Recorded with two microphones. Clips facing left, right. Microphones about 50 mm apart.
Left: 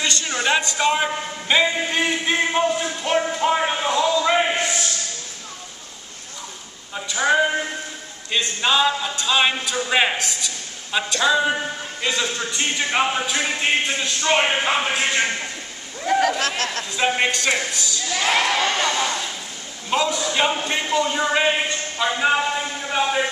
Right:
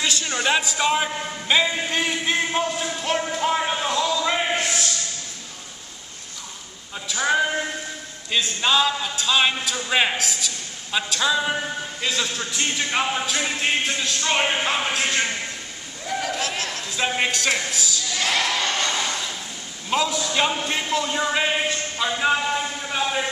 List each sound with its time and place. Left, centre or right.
0.0 s a man's voice: centre
7.2 s a man's voice: centre
16.1 s speech: left
17.0 s a man's voice: centre
17.3 s a woman's voice: centre
18.0 s a man's voice: left
19.9 s a man's voice: centre
22.5 s a sound: centre